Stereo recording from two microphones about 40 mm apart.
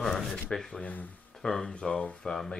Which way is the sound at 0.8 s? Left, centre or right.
Left.